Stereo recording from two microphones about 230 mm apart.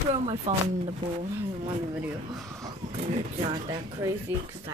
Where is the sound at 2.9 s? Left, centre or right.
Right.